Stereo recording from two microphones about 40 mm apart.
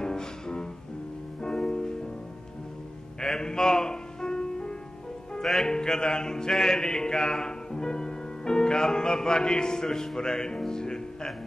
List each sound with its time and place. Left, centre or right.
0.0 s music: centre
3.2 s music: centre
5.4 s speech: centre
5.7 s a sound: centre
10.6 s music: centre